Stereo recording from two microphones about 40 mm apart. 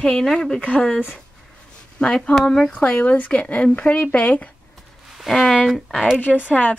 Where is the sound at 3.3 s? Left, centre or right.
Left.